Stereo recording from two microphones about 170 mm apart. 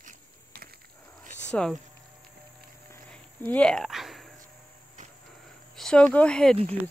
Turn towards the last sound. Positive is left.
turn(degrees=5)  # may be behind; listen again after turning